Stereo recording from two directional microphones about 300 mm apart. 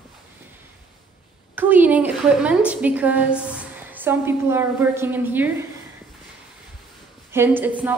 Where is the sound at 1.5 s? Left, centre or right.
Centre.